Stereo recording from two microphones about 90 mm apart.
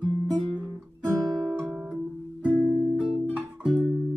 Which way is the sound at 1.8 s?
15° right (ahead or behind).